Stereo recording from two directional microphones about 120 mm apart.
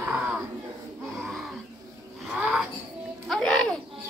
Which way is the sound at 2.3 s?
5° right (ahead or behind).